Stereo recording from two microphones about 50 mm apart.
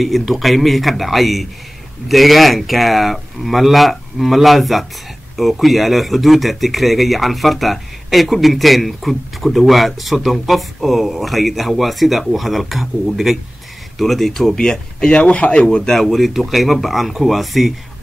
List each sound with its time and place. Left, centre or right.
0.0 s speech: centre
16.0 s speech: centre